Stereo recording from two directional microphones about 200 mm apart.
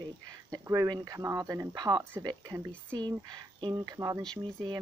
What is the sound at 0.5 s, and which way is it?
Speech, 15° right (ahead or behind).